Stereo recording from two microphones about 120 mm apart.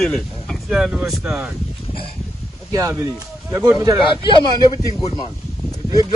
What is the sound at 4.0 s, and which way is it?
Speech, 40° left (ahead or behind).